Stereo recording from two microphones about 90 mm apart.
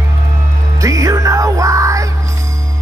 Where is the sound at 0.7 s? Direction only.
35° right (ahead or behind).